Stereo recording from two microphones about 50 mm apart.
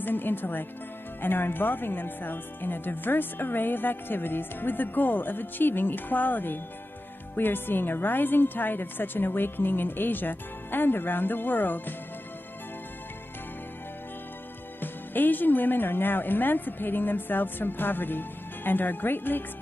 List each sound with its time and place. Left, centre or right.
0.0 s a woman's voice: left
14.8 s speech: left